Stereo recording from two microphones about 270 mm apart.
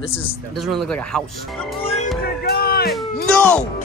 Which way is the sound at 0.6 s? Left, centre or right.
Centre.